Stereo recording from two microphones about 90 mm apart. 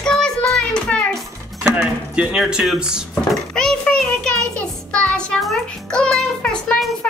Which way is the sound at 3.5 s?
5° left (ahead or behind).